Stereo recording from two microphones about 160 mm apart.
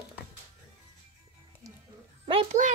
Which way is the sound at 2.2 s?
35° right (ahead or behind).